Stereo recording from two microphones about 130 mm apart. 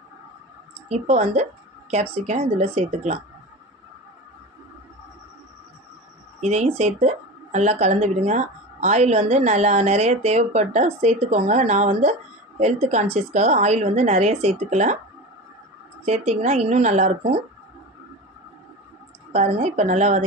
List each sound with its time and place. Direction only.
0.8 s a woman's voice: 55° right (ahead or behind)
6.4 s a woman's voice: 60° right (ahead or behind)
16.1 s a woman's voice: 60° right (ahead or behind)
19.3 s a woman's voice: 55° right (ahead or behind)